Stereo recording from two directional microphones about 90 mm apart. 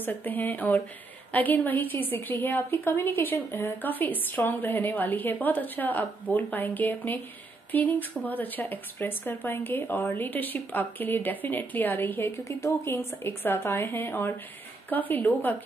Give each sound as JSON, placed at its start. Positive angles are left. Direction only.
{"t": 0.0, "sound": "a woman's voice", "side_deg": 20}